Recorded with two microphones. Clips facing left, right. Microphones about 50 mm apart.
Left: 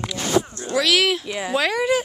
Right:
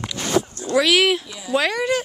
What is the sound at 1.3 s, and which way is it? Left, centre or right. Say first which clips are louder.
Speech: left 4 dB; left.